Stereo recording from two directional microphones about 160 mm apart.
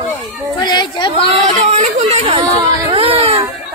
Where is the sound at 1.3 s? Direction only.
40° right (ahead or behind).